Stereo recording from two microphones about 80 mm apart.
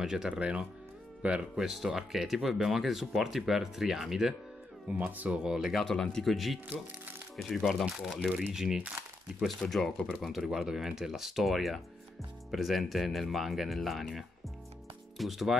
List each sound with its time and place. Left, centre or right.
0.0 s speech: centre
4.8 s speech: centre
5.4 s speech: centre
5.8 s speech: centre
9.4 s speech: centre